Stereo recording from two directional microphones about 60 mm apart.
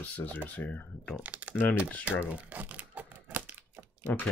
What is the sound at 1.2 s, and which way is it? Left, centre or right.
Speech, right.